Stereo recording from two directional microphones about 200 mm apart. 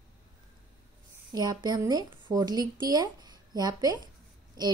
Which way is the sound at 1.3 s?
20° right (ahead or behind).